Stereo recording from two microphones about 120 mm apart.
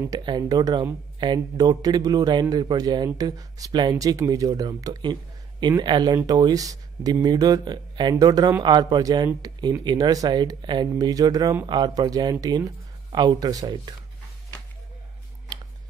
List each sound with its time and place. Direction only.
0.2 s speech: 35° right (ahead or behind)